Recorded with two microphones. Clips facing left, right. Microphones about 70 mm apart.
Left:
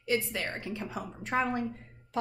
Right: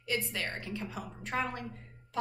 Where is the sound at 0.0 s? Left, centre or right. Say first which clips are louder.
Left 4 dB; left.